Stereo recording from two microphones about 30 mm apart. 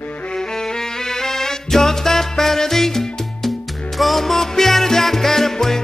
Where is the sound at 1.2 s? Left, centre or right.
Centre.